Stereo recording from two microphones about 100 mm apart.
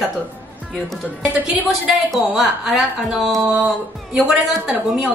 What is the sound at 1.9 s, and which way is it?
A woman's voice, centre (ahead or behind).